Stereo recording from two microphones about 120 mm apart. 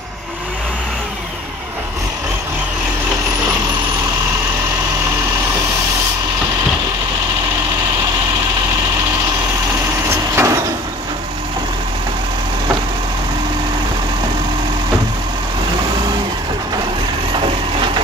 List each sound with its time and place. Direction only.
10.3 s vehicle: 25° right (ahead or behind)